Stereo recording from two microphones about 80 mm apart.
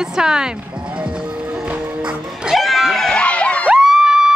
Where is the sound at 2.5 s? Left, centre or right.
Centre.